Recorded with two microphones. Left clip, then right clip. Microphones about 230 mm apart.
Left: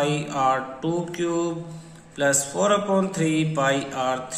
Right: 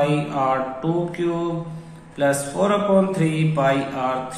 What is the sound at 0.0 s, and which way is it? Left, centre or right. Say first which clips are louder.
A man's voice: right 2 dB; left.